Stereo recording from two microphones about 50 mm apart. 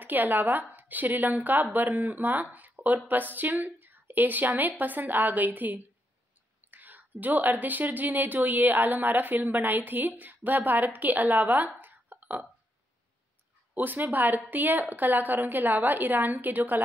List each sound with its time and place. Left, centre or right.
0.0 s a woman's voice: right
2.5 s a sound: right
3.1 s a woman's voice: right
13.7 s a woman's voice: right